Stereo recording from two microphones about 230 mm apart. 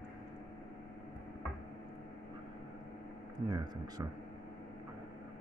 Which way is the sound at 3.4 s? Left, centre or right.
Centre.